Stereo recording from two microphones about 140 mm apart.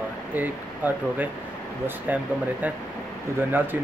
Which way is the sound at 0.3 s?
15° right (ahead or behind).